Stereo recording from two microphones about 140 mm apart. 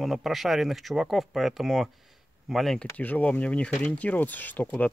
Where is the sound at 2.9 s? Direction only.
10° left (ahead or behind).